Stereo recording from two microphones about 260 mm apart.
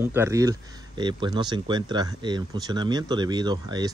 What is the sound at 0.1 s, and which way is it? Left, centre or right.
Speech, centre.